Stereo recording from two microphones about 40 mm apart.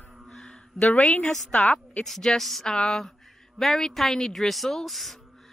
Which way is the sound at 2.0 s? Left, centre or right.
Centre.